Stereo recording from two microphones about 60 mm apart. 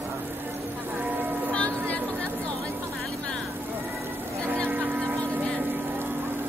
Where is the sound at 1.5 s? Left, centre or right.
Left.